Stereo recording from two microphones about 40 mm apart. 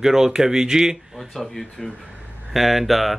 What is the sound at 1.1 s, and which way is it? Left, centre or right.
A man's voice, centre.